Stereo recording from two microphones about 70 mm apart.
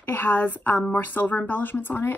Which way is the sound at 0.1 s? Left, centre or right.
Left.